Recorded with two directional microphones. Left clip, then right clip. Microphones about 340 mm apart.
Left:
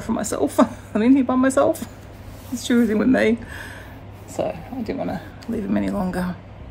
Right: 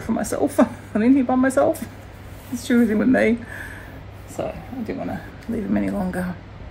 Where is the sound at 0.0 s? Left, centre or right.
Centre.